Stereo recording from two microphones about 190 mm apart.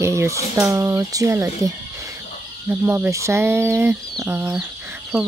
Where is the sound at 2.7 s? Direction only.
10° right (ahead or behind).